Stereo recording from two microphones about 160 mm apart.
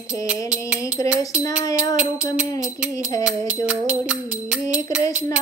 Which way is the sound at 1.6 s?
25° left (ahead or behind).